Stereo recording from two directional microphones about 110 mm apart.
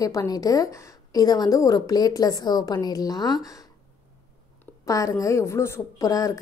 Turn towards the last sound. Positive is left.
turn(degrees=30)  # may be behind; listen again after turning